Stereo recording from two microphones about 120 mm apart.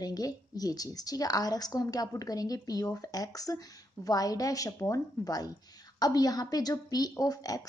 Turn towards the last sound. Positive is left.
turn(degrees=30)  # may be behind; listen again after turning